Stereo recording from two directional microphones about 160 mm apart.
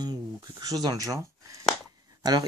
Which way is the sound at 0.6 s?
25° right (ahead or behind).